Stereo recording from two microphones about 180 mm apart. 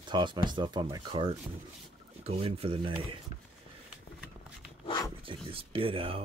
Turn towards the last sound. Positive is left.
turn(degrees=-30)  # may be behind; listen again after turning